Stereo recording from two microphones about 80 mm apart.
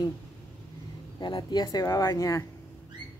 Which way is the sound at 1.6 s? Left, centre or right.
Left.